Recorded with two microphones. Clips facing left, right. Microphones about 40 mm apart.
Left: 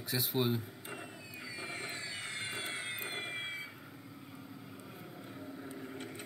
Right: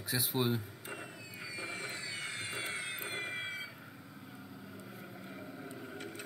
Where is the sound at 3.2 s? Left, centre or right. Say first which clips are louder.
Right 1 dB; centre.